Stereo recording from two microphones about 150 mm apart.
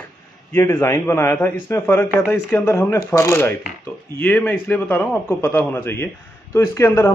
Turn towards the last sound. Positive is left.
turn(degrees=20)  # may be behind; listen again after turning